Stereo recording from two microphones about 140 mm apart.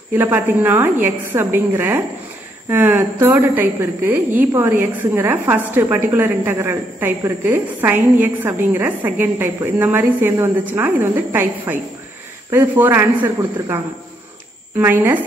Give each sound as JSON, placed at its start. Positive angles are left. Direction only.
{"t": 0.1, "sound": "a woman's voice", "side_deg": -15}
{"t": 14.8, "sound": "a woman's voice", "side_deg": -15}